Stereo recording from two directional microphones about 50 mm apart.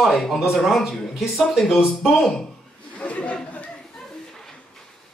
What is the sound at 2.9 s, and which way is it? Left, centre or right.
Chatter, left.